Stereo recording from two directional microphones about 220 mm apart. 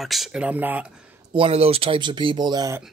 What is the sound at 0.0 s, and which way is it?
Speech, centre (ahead or behind).